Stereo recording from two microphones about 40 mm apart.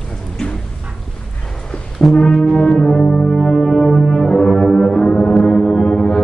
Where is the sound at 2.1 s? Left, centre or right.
Centre.